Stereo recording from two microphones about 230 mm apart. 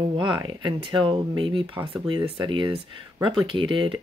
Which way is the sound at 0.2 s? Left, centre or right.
Centre.